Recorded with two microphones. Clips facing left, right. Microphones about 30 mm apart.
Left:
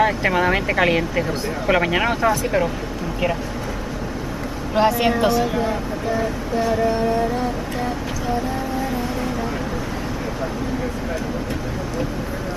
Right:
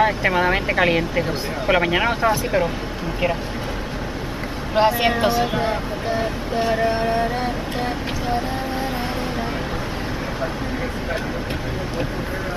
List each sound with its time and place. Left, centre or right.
0.0 s speech: centre
4.7 s speech: right
5.6 s vehicle: right